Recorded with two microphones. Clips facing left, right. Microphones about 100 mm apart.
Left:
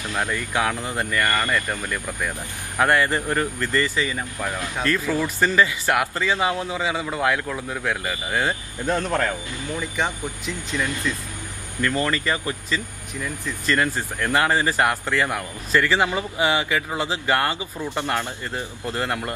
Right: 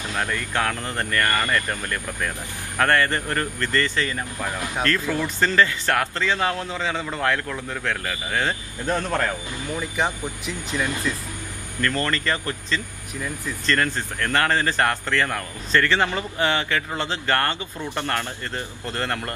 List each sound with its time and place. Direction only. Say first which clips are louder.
0.1 s a man's voice: left 1 dB; 15° left (ahead or behind)
9.8 s speech: right 1 dB; 10° right (ahead or behind)
11.8 s a man's voice: left 1 dB; 15° left (ahead or behind)